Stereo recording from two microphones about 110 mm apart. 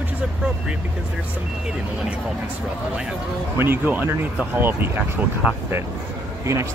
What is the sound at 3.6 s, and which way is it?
Speech, 15° right (ahead or behind).